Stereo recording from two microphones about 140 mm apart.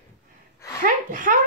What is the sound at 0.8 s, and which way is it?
Speech, 70° right (ahead or behind).